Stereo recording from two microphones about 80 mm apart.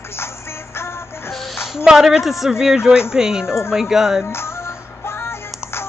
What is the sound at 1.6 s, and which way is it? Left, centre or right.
A woman's voice, centre.